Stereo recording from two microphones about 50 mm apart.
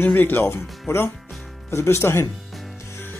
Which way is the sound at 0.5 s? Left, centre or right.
Left.